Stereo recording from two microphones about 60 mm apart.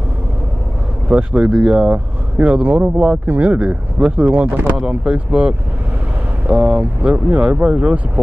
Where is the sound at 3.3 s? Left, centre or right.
Right.